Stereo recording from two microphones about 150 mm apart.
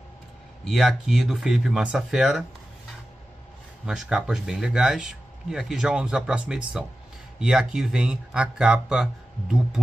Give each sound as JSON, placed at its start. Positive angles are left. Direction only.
{"t": 0.7, "sound": "speech", "side_deg": 0}
{"t": 3.8, "sound": "speech", "side_deg": -5}